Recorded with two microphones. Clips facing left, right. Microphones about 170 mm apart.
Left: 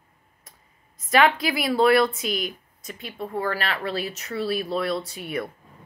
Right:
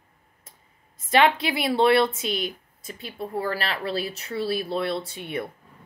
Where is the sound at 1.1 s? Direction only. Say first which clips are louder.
Even; 25° right (ahead or behind).